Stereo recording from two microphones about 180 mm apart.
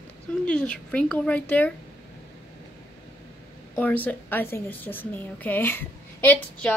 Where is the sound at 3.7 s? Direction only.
10° left (ahead or behind).